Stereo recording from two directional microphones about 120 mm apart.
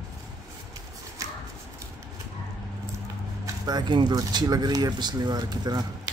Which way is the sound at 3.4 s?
35° right (ahead or behind).